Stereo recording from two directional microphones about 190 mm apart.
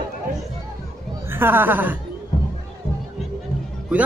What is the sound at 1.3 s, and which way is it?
Speech, 10° right (ahead or behind).